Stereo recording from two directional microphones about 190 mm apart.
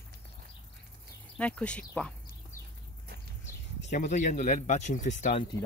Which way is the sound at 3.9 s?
40° left (ahead or behind).